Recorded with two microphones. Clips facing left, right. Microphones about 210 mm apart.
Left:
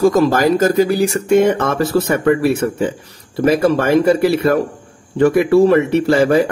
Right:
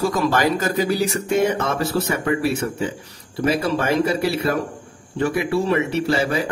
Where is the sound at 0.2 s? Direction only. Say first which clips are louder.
Left 7 dB; 40° left (ahead or behind).